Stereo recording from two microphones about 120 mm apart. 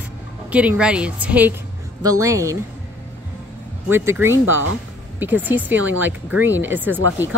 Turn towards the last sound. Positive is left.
turn(degrees=-15)  # may be behind; listen again after turning